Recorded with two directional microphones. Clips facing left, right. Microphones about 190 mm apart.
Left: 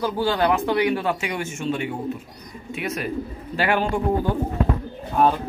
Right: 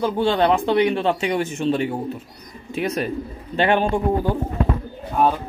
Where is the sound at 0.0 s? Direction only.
25° right (ahead or behind).